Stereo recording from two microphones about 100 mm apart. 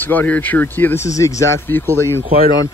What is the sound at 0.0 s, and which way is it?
Speech, 20° left (ahead or behind).